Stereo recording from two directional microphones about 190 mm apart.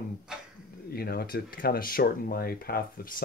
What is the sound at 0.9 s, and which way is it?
Speech, 55° left (ahead or behind).